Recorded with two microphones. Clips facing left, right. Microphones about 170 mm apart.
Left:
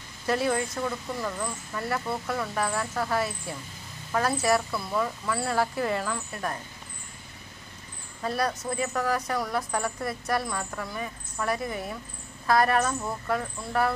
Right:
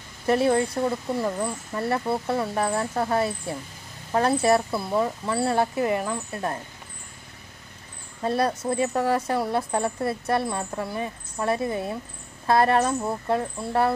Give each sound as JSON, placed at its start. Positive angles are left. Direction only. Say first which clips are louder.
{"t": 0.3, "sound": "speech", "louder": "right 5 dB", "side_deg": -30}
{"t": 8.2, "sound": "speech", "louder": "right 5 dB", "side_deg": -30}